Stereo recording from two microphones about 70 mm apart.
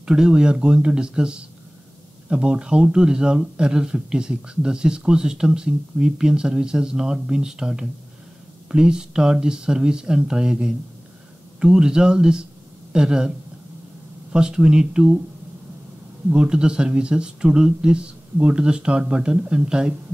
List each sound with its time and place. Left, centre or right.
0.0 s speech: centre
14.3 s speech: centre
16.3 s speech: centre